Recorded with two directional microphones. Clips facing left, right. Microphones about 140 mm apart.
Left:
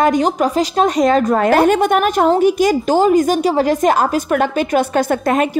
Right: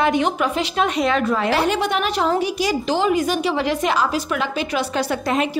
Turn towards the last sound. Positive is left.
turn(degrees=50)  # may be behind; listen again after turning